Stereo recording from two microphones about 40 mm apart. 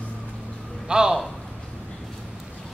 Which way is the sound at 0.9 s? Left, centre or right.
Centre.